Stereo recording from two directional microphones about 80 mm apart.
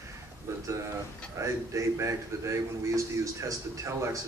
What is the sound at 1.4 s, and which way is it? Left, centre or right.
Speech, right.